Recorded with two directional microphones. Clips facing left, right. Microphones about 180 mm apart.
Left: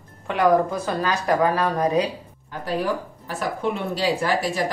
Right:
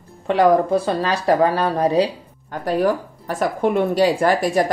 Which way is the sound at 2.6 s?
50° right (ahead or behind).